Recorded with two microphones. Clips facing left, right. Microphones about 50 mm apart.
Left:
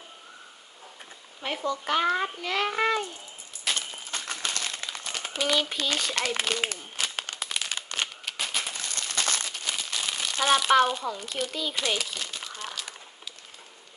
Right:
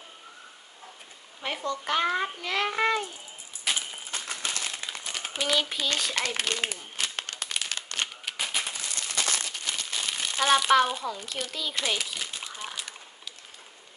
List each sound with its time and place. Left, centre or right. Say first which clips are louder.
1.4 s a child's voice: left 1 dB; centre
3.6 s a sound: even; centre
4.1 s crumpling: left 1 dB; left
5.1 s a child's voice: left 1 dB; centre
7.0 s crumpling: left 1 dB; centre
8.3 s a sound: even; centre
8.8 s crumpling: left 1 dB; left
9.6 s crumpling: left 1 dB; centre
10.2 s a child's voice: even; centre
12.0 s speech: even; centre